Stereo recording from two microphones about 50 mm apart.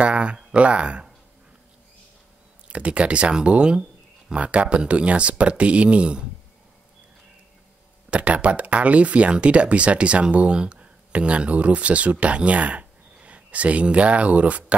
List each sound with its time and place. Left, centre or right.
0.0 s a sound: right
0.6 s speech: right
2.7 s speech: right
8.1 s speech: right